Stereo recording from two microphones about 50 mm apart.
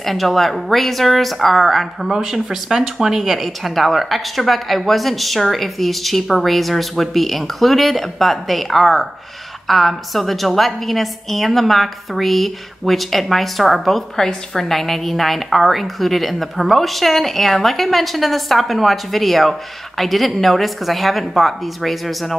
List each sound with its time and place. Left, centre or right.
0.0 s a woman's voice: centre